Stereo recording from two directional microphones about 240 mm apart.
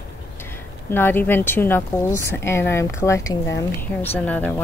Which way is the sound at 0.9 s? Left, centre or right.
Centre.